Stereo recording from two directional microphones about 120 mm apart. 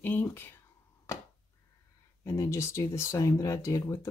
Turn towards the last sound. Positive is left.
turn(degrees=25)  # may be behind; listen again after turning